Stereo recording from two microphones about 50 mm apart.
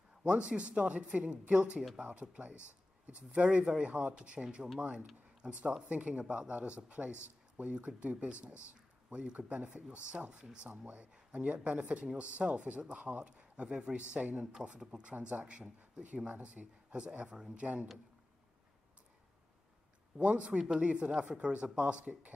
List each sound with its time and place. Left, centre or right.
0.2 s speech: right
10.9 s speech: right
13.4 s speech: right
15.1 s speech: right
15.4 s speech: centre
20.2 s speech: right